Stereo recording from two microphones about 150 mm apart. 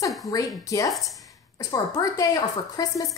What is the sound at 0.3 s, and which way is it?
A woman's voice, 20° left (ahead or behind).